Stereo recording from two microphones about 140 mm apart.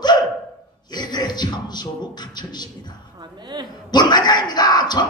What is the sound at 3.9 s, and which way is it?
A man's voice, 30° left (ahead or behind).